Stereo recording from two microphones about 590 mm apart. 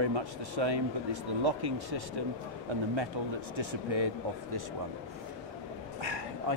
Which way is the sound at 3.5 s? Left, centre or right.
Right.